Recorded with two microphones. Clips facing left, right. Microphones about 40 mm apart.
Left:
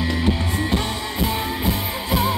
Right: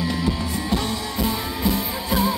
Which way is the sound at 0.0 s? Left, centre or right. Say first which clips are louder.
Left 2 dB; left.